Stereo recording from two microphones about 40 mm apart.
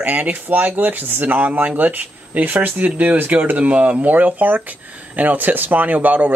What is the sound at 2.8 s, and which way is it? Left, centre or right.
Speech, right.